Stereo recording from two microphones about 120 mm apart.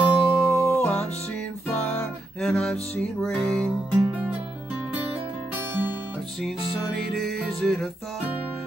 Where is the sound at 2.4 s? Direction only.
5° left (ahead or behind).